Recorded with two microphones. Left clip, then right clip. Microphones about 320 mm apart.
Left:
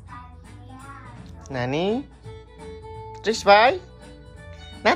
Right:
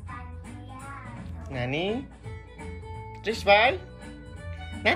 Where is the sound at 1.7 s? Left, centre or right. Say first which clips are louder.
Left 5 dB; left.